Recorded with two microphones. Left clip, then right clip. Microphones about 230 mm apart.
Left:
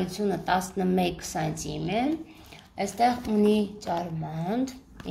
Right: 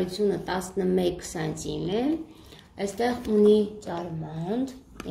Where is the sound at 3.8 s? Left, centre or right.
Left.